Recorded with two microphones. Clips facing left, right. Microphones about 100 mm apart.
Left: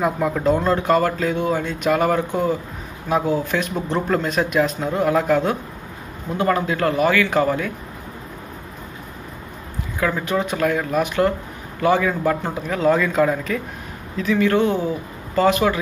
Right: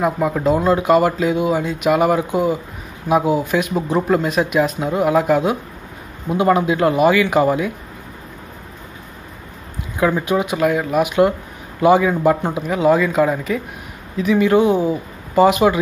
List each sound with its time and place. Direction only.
0.0 s speech: 5° right (ahead or behind)
9.9 s speech: 15° right (ahead or behind)